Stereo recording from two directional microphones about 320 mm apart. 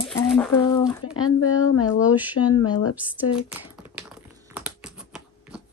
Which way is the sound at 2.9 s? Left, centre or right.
Centre.